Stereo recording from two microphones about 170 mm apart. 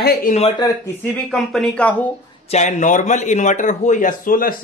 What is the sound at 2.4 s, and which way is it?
A man's voice, 45° left (ahead or behind).